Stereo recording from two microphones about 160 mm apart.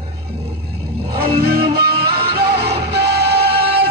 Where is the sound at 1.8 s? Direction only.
80° right.